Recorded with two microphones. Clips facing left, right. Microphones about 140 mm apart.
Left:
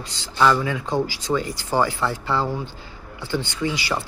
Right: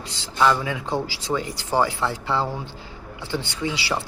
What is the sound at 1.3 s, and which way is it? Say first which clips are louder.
Speech: left 2 dB; 5° right (ahead or behind).